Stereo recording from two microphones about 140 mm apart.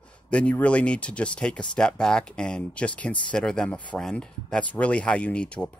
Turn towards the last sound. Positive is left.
turn(degrees=10)  # may be behind; listen again after turning